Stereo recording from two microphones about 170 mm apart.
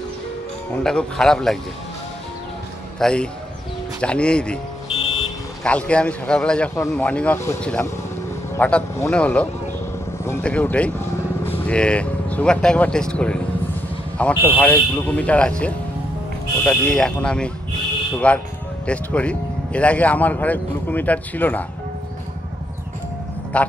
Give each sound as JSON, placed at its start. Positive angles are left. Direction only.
{"t": 0.7, "sound": "speech", "side_deg": 5}
{"t": 3.0, "sound": "speech", "side_deg": 5}
{"t": 4.9, "sound": "vehicle", "side_deg": 35}
{"t": 5.6, "sound": "speech", "side_deg": 5}
{"t": 23.5, "sound": "a man's voice", "side_deg": 5}